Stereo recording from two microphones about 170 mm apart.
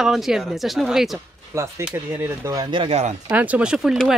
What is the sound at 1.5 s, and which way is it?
Speech, 15° right (ahead or behind).